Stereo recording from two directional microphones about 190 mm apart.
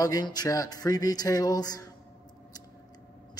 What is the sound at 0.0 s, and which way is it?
A man's voice, 20° left (ahead or behind).